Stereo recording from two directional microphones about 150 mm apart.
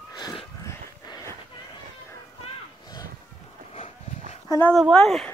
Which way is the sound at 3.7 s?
40° left (ahead or behind).